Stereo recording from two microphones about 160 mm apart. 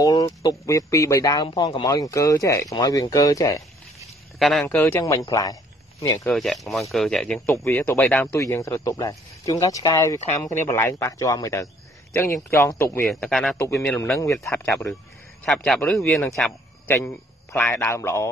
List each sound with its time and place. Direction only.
0.0 s speech: 25° left (ahead or behind)
4.4 s a man's voice: centre (ahead or behind)
4.6 s a man's voice: 10° left (ahead or behind)
6.2 s speech: centre (ahead or behind)
7.5 s a man's voice: 15° left (ahead or behind)
13.1 s speech: 5° left (ahead or behind)
13.6 s a man's voice: 15° left (ahead or behind)
16.3 s a sound: 5° left (ahead or behind)
16.9 s a man's voice: 10° left (ahead or behind)